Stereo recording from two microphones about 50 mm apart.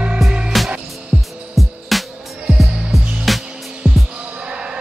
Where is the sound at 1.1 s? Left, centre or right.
Centre.